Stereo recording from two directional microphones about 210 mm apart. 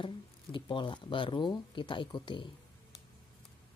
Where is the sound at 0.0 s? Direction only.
25° left (ahead or behind).